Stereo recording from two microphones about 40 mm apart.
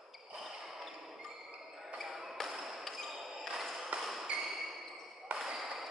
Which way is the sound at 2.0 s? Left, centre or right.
Centre.